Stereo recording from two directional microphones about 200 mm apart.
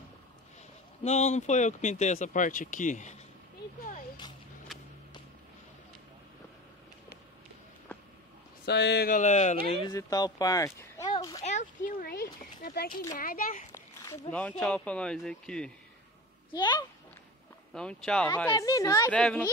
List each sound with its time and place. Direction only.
1.0 s speech: 35° left (ahead or behind)
8.6 s speech: 55° left (ahead or behind); by 9.6 s 35° left (ahead or behind)
9.8 s speech: 20° left (ahead or behind)
11.4 s speech: 40° left (ahead or behind)
13.7 s a sound: 15° left (ahead or behind)
14.3 s a man's voice: 5° left (ahead or behind)
16.5 s speech: 20° left (ahead or behind)
17.7 s a man's voice: 5° left (ahead or behind)
18.5 s a woman's voice: 15° left (ahead or behind)
19.1 s a man's voice: 5° left (ahead or behind)